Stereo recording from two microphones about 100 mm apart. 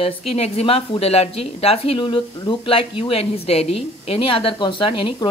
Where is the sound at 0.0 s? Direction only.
90° left.